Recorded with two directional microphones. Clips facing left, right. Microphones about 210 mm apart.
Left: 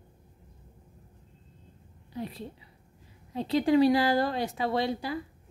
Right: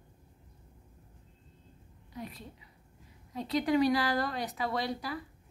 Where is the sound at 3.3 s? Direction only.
30° left (ahead or behind).